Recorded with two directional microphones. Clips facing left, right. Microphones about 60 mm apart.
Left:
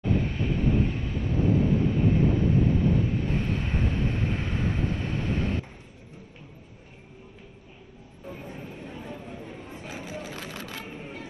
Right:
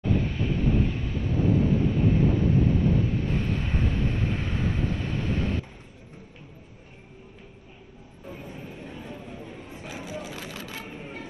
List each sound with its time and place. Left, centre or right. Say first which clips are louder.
0.0 s vehicle: even; left
8.3 s a sound: even; left
10.9 s music: even; right